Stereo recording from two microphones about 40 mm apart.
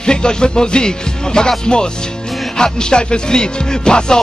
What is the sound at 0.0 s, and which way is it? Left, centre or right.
Music, left.